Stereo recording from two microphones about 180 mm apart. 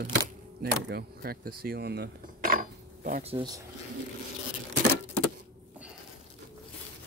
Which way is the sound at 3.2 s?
35° right (ahead or behind).